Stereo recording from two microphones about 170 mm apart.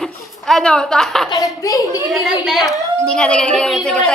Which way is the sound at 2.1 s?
Centre (ahead or behind).